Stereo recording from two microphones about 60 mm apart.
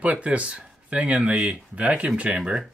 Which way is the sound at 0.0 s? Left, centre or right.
Right.